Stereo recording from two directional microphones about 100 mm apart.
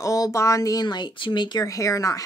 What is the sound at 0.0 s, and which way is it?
Speech, 35° left (ahead or behind).